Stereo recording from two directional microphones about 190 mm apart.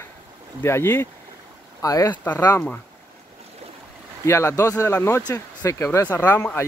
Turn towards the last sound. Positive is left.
turn(degrees=10)  # may be behind; listen again after turning